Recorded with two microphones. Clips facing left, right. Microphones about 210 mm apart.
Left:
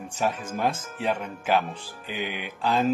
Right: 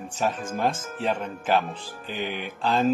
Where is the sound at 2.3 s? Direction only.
45° right (ahead or behind).